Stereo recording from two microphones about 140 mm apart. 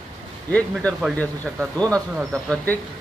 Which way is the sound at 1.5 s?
5° right (ahead or behind).